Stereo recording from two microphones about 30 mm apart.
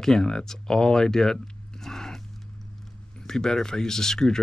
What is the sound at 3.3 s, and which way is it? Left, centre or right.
Speech, centre.